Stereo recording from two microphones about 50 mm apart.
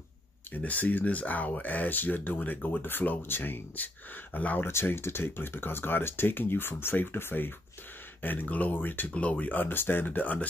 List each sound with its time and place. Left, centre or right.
0.5 s speech: left
4.6 s speech: left
9.1 s speech: left